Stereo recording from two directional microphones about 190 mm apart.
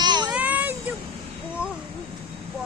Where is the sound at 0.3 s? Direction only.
10° right (ahead or behind).